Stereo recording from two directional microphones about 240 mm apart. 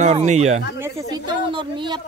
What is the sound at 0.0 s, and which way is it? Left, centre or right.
Speech, right.